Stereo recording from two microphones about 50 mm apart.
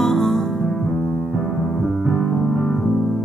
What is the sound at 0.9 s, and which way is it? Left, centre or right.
Music, left.